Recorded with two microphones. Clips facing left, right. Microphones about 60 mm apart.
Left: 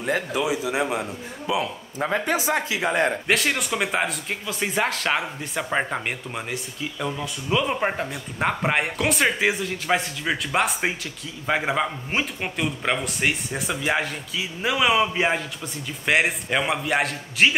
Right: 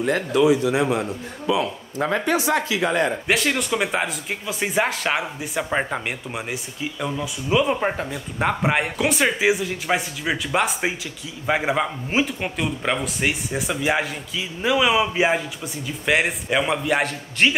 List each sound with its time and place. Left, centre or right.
0.0 s speech: centre
2.2 s speech: centre
3.3 s a man's voice: centre
4.5 s a man's voice: centre